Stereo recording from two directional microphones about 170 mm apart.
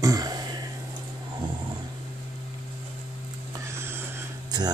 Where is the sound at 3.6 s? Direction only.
15° right (ahead or behind).